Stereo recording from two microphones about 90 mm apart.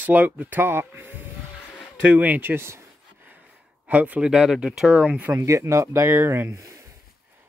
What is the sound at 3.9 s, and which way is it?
Speech, 15° right (ahead or behind).